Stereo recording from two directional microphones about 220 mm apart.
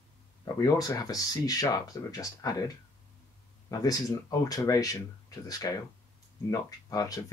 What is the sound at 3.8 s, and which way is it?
Speech, 15° left (ahead or behind).